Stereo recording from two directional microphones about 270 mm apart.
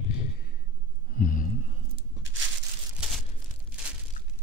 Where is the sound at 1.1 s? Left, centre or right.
Left.